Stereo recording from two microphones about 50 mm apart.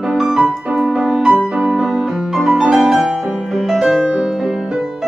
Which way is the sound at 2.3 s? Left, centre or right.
Centre.